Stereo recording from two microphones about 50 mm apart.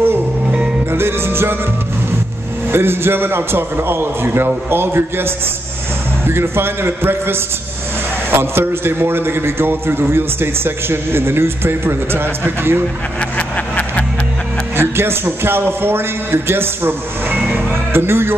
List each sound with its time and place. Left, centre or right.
0.9 s music: right
2.7 s a man's voice: right
13.4 s a sound: left
14.8 s a man's voice: right
17.5 s music: right